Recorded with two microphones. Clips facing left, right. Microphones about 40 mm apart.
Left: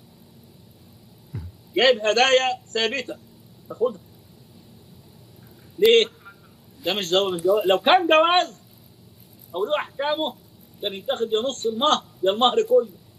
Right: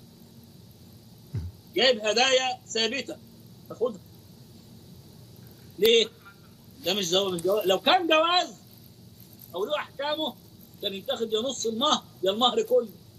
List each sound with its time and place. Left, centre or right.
1.3 s a man's voice: centre
5.8 s a sound: centre
6.8 s a man's voice: centre
8.1 s a man's voice: centre